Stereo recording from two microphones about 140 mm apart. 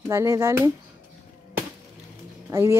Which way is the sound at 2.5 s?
20° right (ahead or behind).